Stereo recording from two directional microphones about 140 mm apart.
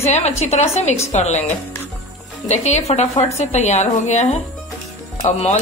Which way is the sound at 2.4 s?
55° left (ahead or behind).